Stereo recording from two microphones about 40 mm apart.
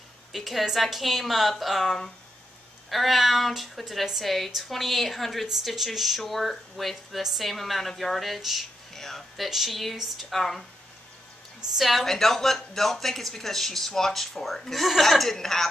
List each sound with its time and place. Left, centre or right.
0.3 s a woman's voice: centre
8.9 s a sound: centre
9.4 s a woman's voice: centre
11.7 s a woman's voice: centre